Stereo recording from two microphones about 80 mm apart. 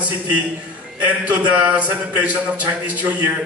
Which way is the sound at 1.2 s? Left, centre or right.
Centre.